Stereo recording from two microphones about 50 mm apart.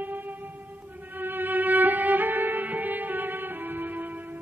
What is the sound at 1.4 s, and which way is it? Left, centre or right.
Music, right.